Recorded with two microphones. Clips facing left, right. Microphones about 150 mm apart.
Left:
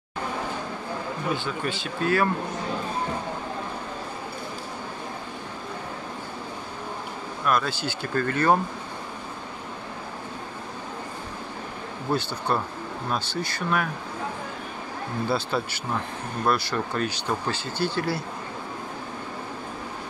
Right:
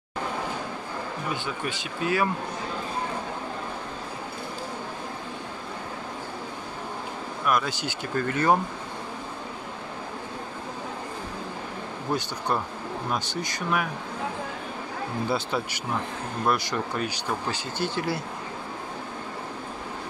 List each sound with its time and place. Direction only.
1.3 s speech: 15° right (ahead or behind)
7.4 s speech: 15° right (ahead or behind)
12.1 s speech: 15° right (ahead or behind)
15.2 s speech: 15° right (ahead or behind)